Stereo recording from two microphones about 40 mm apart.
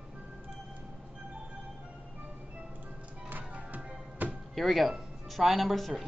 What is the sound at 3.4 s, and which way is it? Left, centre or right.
Music, right.